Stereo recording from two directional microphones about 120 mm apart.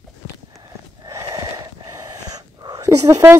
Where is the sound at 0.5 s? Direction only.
25° right (ahead or behind).